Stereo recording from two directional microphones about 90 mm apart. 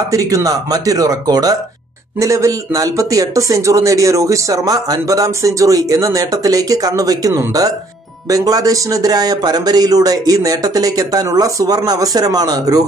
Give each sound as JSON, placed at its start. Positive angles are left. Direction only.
{"t": 0.1, "sound": "speech", "side_deg": -40}